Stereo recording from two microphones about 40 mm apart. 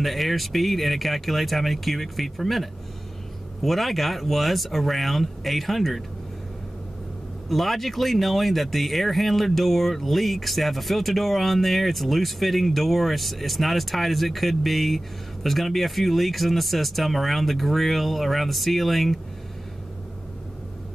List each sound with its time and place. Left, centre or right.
0.0 s speech: centre
7.4 s speech: centre